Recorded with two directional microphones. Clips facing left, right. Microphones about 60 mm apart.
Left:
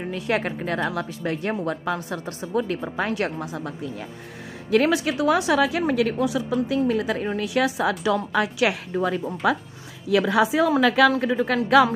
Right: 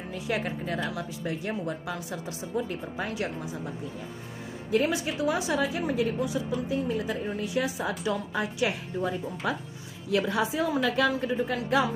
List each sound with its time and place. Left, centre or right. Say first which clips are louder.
0.0 s a woman's voice: left 6 dB; left